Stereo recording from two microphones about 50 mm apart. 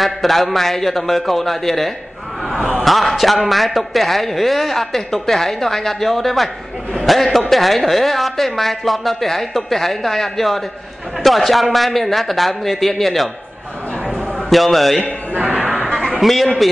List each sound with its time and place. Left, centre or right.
0.0 s a man's voice: centre
14.5 s a man's voice: centre
15.3 s speech: right
16.2 s a man's voice: centre